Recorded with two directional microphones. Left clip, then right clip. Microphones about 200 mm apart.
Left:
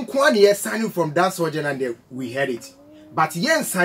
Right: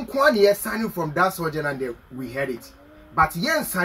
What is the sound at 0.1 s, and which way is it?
Speech, 20° left (ahead or behind).